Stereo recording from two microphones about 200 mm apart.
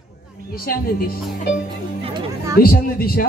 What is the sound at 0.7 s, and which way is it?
Speech, 45° left (ahead or behind).